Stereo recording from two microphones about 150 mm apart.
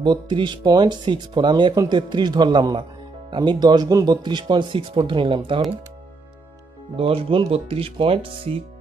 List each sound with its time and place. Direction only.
0.0 s speech: 30° right (ahead or behind)
7.0 s speech: 35° right (ahead or behind)